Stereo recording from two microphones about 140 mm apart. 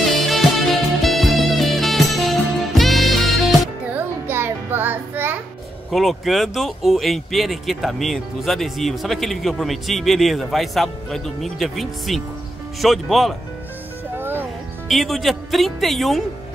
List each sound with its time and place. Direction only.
0.1 s music: centre (ahead or behind)
3.9 s music: 15° right (ahead or behind)
5.9 s speech: centre (ahead or behind)
14.1 s music: 15° right (ahead or behind)
14.9 s speech: centre (ahead or behind)